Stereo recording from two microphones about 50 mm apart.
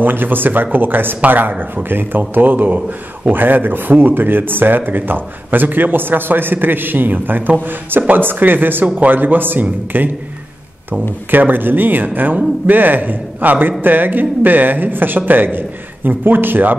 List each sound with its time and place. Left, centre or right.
0.0 s speech: right